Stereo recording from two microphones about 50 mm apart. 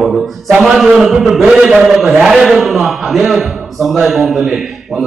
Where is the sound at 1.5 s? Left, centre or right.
Centre.